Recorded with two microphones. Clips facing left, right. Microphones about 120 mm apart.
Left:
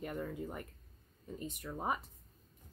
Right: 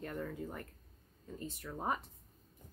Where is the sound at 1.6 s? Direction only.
5° left (ahead or behind).